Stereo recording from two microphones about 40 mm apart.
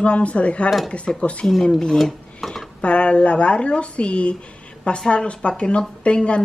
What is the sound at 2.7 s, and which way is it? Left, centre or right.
A woman's voice, left.